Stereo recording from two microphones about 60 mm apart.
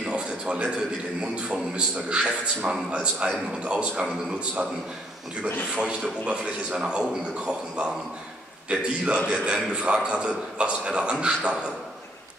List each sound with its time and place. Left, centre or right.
0.0 s a sound: centre
1.2 s a man's voice: centre
5.8 s a man's voice: centre